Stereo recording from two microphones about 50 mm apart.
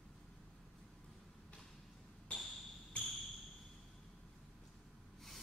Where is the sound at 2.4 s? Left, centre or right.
Centre.